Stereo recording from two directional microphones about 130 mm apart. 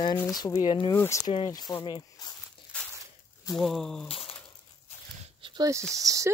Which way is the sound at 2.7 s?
10° left (ahead or behind).